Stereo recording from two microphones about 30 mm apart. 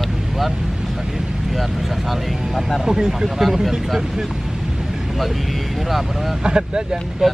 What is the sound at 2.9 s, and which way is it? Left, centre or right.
Speech, centre.